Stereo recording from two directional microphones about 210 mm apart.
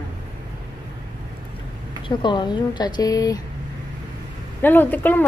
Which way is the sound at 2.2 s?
20° left (ahead or behind).